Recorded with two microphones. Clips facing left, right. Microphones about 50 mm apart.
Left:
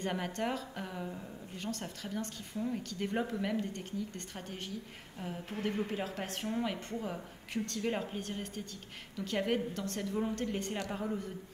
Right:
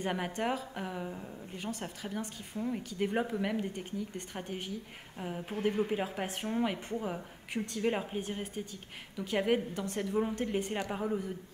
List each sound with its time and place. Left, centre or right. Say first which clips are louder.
0.0 s a woman's voice: right 2 dB; centre